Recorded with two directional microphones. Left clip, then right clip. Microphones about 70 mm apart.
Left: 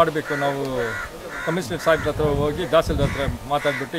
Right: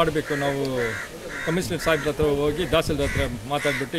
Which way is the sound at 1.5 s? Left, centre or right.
Centre.